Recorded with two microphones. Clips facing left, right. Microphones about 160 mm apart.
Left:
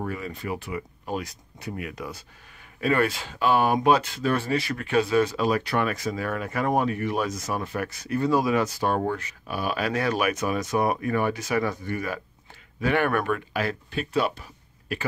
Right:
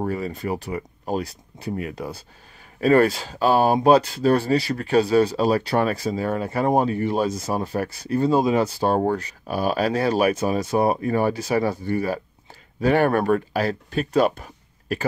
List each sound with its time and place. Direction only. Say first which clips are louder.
0.0 s speech: right 6 dB; 35° right (ahead or behind)